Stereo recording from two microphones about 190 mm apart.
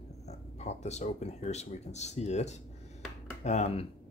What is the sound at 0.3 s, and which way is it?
Speech, 35° left (ahead or behind).